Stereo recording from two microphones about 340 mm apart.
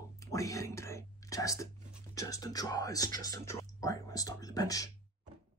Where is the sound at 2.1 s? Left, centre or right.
Centre.